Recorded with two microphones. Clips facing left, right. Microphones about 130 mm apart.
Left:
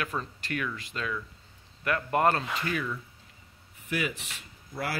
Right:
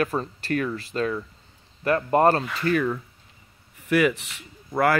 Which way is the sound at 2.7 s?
55° right (ahead or behind).